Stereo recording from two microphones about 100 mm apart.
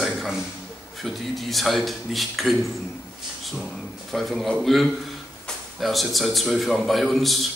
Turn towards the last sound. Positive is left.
turn(degrees=0)  # may be behind; listen again after turning